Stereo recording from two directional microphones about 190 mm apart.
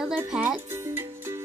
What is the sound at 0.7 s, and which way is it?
Music, 15° right (ahead or behind).